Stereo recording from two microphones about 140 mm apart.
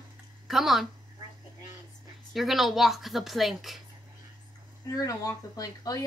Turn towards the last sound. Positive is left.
turn(degrees=25)  # may be behind; listen again after turning